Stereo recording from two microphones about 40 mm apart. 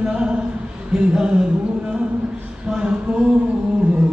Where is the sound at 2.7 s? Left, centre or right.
Right.